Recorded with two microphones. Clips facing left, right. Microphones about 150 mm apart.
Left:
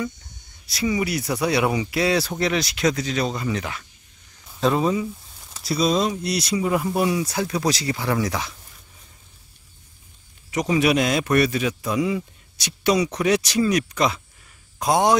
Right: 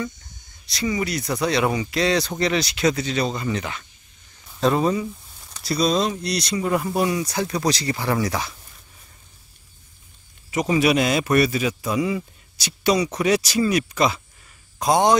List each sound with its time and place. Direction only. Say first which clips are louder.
0.7 s a man's voice: left 1 dB; 5° left (ahead or behind)
10.5 s a man's voice: right 1 dB; 5° right (ahead or behind)